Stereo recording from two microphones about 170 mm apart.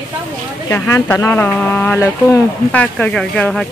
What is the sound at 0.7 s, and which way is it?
Speech, 15° left (ahead or behind).